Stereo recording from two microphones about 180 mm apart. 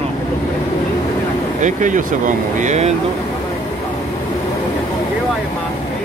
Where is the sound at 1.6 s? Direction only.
45° right (ahead or behind).